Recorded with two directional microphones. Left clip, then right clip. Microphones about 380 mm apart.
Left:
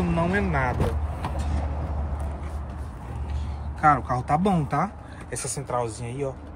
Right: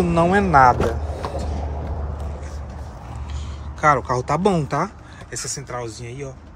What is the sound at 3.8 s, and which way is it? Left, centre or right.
Speech, centre.